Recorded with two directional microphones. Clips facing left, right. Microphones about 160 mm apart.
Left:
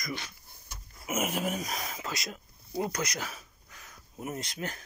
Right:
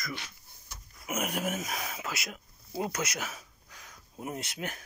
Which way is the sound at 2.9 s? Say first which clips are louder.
Even; 10° right (ahead or behind).